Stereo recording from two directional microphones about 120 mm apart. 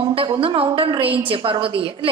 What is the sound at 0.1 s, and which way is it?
A woman's voice, 50° right (ahead or behind).